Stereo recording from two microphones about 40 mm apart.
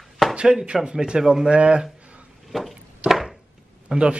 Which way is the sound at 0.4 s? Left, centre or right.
Right.